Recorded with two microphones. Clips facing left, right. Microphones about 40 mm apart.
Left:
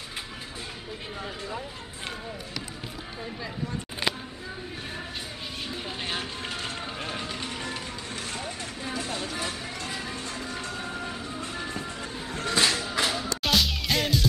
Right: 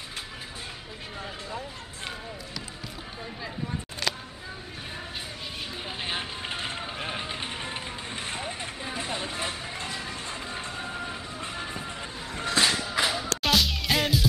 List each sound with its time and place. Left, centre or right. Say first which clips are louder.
4.0 s music: left 2 dB; centre
5.9 s vehicle: right 1 dB; centre
6.5 s run: right 3 dB; right
7.0 s music: right 1 dB; right
8.8 s a sound: left 1 dB; right
9.8 s music: left 2 dB; centre
10.3 s music: left 1 dB; right
10.9 s vehicle: left 1 dB; centre
12.5 s music: even; centre